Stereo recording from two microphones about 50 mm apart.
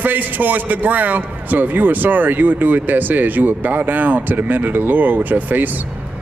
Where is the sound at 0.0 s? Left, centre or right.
Right.